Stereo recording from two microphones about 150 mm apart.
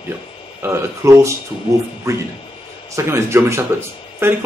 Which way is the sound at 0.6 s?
20° right (ahead or behind).